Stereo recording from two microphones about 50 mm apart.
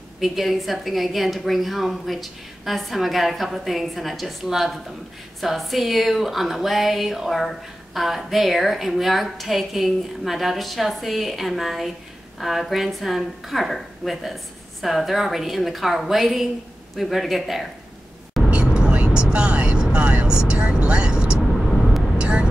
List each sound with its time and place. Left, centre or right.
0.2 s speech: centre
18.5 s vehicle: centre
21.4 s vehicle: centre
22.2 s vehicle: centre